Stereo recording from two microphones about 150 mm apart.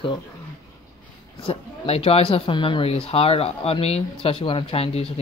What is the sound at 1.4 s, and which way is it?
Speech, 40° left (ahead or behind).